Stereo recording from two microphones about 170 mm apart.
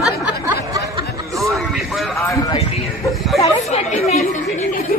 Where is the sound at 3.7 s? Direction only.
40° left (ahead or behind).